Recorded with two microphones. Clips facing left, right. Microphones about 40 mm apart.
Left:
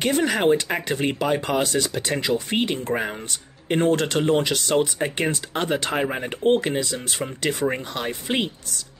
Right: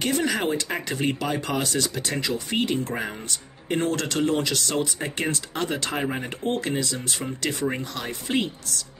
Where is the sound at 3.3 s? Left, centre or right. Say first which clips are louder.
Left 3 dB; left.